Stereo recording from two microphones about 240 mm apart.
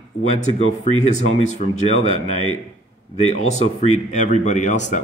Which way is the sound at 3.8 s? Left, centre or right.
Left.